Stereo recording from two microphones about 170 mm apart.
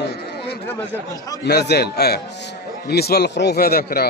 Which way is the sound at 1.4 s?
75° left (ahead or behind).